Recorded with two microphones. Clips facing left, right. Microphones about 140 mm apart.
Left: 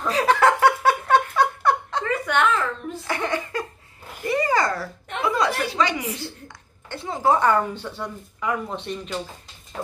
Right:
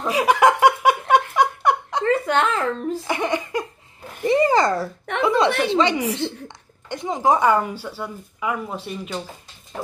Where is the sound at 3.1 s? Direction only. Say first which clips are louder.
Even; 15° right (ahead or behind).